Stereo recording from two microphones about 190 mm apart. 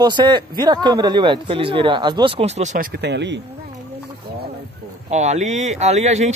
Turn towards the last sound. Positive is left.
turn(degrees=-35)  # may be behind; listen again after turning